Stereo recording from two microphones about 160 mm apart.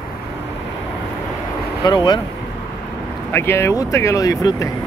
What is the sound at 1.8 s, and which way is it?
Speech, 25° left (ahead or behind).